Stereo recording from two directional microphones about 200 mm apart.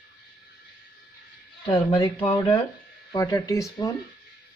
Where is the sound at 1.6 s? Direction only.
25° left (ahead or behind).